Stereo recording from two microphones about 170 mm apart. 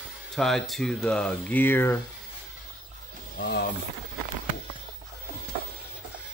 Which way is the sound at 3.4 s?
90° left.